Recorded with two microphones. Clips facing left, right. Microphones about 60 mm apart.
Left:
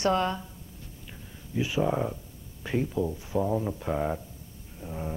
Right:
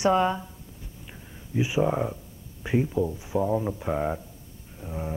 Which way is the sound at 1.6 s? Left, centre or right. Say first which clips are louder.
Right 2 dB; centre.